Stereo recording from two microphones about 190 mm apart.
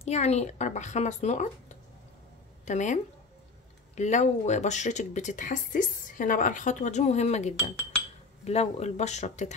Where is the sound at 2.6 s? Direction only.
40° left (ahead or behind).